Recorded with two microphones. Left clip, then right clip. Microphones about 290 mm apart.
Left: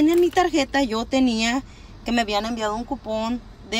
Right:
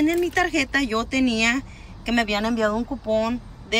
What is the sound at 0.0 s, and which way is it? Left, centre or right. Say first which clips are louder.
Speech: left 3 dB; centre.